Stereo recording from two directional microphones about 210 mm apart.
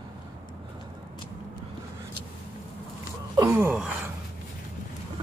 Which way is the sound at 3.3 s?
15° right (ahead or behind).